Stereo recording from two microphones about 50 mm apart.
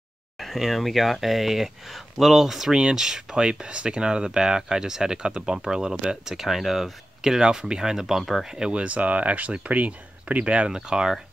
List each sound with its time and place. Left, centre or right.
0.6 s speech: centre
8.2 s speech: centre
8.5 s speech: centre